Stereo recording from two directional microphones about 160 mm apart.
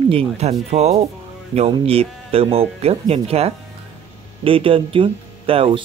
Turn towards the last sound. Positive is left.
turn(degrees=-35)  # may be behind; listen again after turning